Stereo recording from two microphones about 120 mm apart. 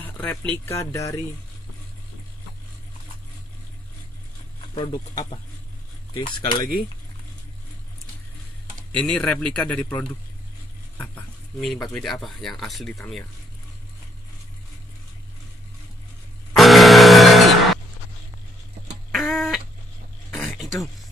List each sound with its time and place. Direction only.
0.0 s speech: 15° left (ahead or behind)
4.7 s speech: 35° left (ahead or behind)
8.9 s a man's voice: 10° left (ahead or behind)
11.6 s speech: 5° left (ahead or behind)
16.5 s a sound: centre (ahead or behind)
19.1 s a sound: centre (ahead or behind)
20.3 s throat clearing: centre (ahead or behind)